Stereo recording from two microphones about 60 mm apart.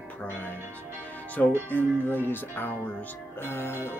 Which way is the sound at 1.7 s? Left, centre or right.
Left.